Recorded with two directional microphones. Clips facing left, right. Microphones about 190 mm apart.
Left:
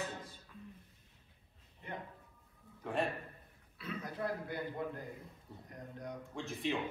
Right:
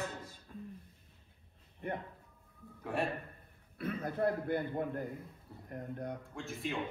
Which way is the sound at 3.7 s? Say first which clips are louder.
Right 6 dB; 55° right (ahead or behind).